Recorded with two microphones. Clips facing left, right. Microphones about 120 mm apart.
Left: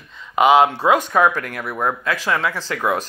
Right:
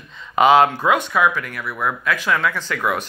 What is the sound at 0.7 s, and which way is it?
Speech, 35° left (ahead or behind).